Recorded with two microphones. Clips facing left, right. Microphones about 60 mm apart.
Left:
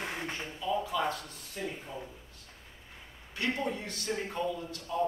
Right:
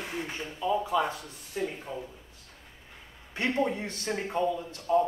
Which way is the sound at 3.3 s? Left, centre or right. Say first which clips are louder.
Right 5 dB; right.